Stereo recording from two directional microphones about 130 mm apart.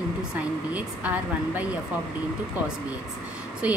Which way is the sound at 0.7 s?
10° right (ahead or behind).